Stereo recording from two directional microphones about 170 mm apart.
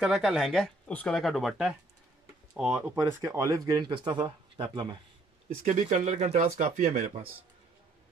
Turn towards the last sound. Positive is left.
turn(degrees=-45)  # may be behind; listen again after turning